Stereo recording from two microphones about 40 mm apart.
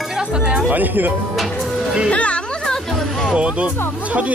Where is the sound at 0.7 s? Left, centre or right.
Right.